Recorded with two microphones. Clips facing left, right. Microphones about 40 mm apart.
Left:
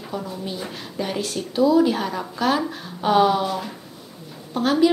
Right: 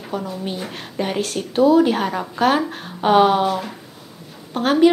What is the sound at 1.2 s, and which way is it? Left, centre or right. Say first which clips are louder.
A woman's voice: right 3 dB; right.